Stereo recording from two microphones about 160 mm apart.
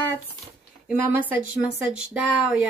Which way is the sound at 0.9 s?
15° right (ahead or behind).